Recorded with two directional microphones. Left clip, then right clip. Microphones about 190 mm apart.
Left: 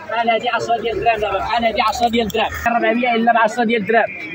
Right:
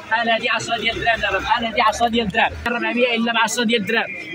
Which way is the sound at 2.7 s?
55° right (ahead or behind).